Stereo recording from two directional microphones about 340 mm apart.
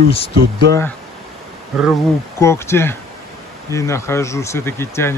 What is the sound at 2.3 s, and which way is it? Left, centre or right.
Speech, centre.